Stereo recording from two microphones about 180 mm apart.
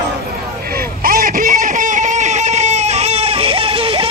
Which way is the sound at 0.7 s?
55° right (ahead or behind).